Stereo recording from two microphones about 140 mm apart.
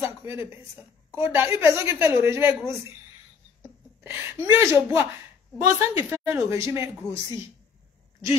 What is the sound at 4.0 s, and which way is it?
A woman's voice, 15° right (ahead or behind).